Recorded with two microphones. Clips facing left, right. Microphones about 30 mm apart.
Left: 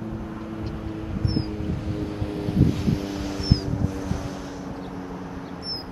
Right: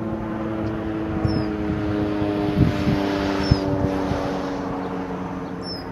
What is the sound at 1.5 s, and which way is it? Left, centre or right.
Vehicle, right.